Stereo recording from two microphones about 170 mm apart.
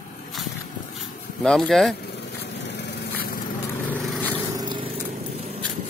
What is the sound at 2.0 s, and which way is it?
Vehicle, 90° left.